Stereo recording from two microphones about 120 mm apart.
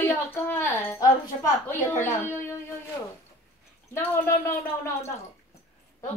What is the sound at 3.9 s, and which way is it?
Speech, 20° left (ahead or behind).